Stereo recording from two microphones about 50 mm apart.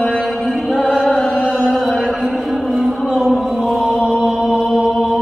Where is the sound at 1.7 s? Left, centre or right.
Centre.